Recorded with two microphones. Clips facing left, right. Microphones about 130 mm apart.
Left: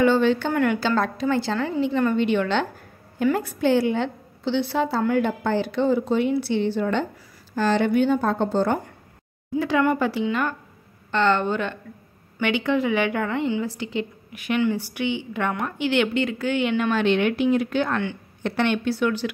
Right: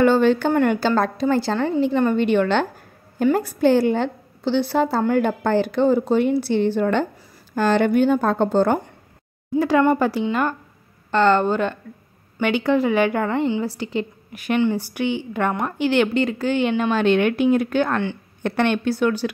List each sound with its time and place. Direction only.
0.0 s a woman's voice: 45° right (ahead or behind)